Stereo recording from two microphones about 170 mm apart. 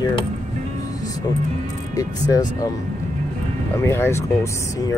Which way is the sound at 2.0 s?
20° left (ahead or behind).